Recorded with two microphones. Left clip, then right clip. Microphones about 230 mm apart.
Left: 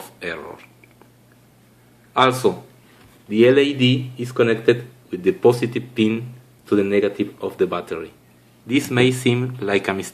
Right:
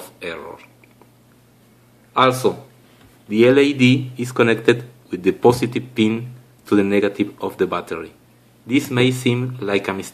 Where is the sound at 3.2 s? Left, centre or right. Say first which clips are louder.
Right 1 dB; centre.